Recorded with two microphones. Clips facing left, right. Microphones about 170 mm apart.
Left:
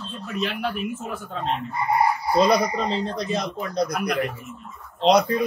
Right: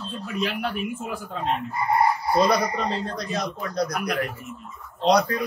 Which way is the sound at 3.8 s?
Centre (ahead or behind).